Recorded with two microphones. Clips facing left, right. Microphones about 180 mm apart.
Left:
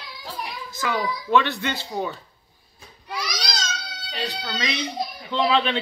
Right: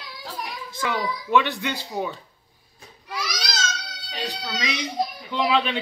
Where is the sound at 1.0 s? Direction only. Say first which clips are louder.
Left 1 dB; 15° right (ahead or behind).